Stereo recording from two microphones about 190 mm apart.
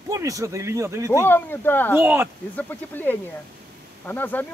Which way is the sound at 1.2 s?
10° left (ahead or behind).